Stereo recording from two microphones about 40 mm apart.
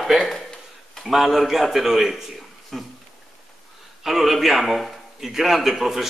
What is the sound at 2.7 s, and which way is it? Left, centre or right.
Speech, centre.